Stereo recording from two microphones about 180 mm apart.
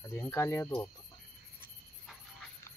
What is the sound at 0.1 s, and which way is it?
Speech, 10° left (ahead or behind).